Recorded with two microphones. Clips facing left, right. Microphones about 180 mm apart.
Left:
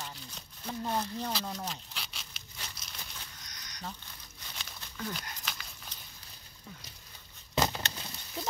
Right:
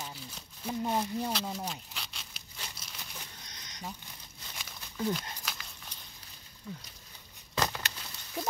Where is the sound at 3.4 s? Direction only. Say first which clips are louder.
Right 1 dB; 25° right (ahead or behind).